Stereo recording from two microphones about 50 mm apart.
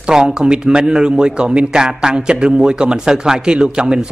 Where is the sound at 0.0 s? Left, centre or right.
Centre.